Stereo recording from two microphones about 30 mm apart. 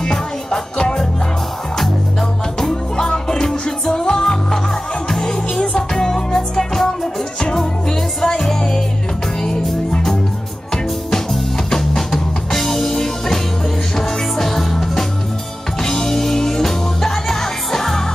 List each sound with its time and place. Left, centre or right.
0.0 s music: centre
2.6 s music: centre
5.6 s music: left
11.8 s music: centre